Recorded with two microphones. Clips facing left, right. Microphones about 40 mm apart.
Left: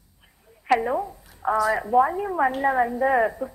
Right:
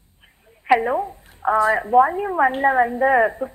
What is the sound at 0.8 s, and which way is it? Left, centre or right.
A man's voice, right.